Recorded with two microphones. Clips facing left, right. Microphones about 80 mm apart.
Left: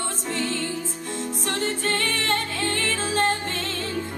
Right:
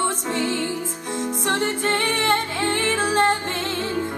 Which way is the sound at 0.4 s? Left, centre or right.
Centre.